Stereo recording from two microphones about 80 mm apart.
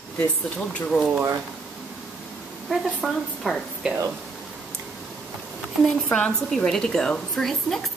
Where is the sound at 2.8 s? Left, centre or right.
Centre.